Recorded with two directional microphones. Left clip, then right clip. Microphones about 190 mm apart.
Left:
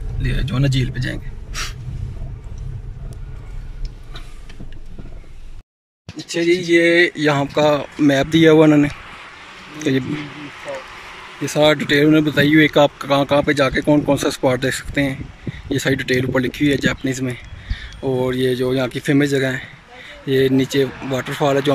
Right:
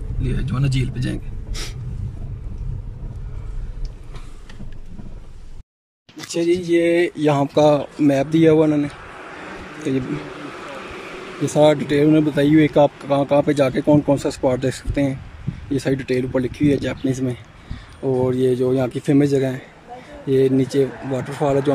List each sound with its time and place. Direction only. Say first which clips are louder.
0.2 s speech: left 4 dB; 5° right (ahead or behind)
6.3 s speech: left 3 dB; 5° right (ahead or behind)
9.2 s a sound: right 3 dB; 50° right (ahead or behind)
11.4 s speech: even; 15° right (ahead or behind)